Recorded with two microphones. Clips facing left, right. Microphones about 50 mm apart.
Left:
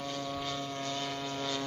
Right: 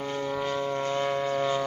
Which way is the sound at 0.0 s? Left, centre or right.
Right.